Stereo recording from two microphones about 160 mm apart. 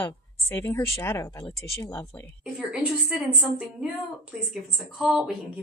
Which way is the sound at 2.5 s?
5° right (ahead or behind).